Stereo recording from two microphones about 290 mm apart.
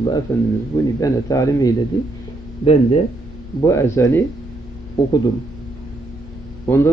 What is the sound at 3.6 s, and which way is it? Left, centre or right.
Speech, centre.